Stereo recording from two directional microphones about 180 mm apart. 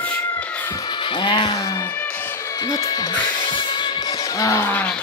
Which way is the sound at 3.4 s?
25° left (ahead or behind).